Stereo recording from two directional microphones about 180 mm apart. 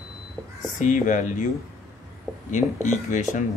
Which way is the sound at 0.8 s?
45° left (ahead or behind).